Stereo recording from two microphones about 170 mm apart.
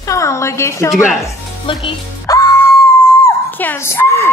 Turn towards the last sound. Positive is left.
turn(degrees=15)  # may be behind; listen again after turning